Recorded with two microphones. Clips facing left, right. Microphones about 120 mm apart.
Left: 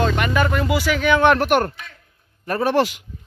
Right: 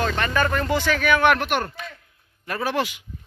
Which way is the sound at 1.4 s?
50° left (ahead or behind).